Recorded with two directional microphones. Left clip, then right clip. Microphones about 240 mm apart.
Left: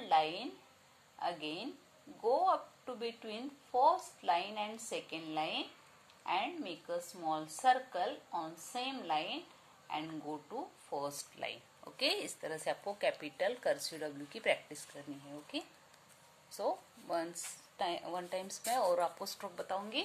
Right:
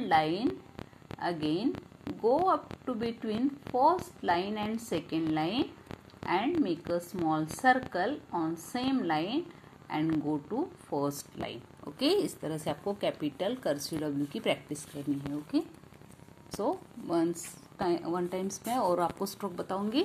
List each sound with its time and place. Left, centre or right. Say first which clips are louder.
0.0 s a woman's voice: right 5 dB; right